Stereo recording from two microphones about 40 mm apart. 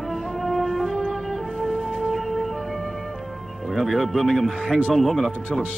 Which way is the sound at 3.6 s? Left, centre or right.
Centre.